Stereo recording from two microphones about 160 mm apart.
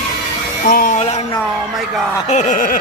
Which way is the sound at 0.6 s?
60° left (ahead or behind).